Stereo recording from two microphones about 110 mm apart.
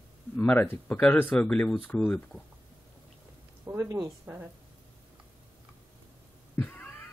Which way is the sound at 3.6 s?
25° right (ahead or behind).